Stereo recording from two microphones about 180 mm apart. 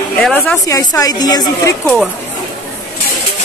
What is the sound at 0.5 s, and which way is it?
A woman's voice, 20° left (ahead or behind).